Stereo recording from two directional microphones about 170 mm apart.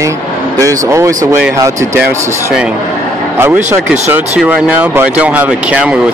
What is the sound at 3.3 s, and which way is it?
Speech, 15° right (ahead or behind).